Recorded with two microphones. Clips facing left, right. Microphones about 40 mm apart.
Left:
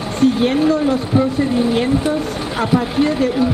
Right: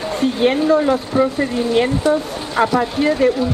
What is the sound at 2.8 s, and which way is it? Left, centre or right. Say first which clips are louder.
Speech: right 1 dB; centre.